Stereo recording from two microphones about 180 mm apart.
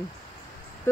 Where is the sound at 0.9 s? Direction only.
15° left (ahead or behind).